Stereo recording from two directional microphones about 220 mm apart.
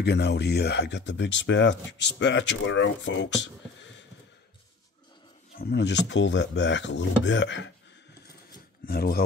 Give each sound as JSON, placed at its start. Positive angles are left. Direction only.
{"t": 0.0, "sound": "speech", "side_deg": 50}
{"t": 5.6, "sound": "speech", "side_deg": 50}
{"t": 8.8, "sound": "speech", "side_deg": 45}